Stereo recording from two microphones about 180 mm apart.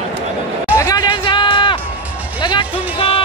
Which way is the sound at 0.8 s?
20° left (ahead or behind).